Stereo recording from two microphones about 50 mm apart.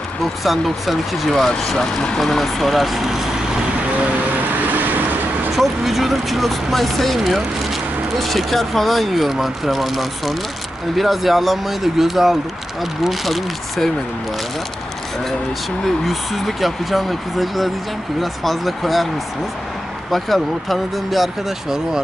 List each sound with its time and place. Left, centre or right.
0.4 s speech: centre
4.6 s vehicle: right
5.5 s speech: centre
15.8 s speech: centre
20.1 s speech: centre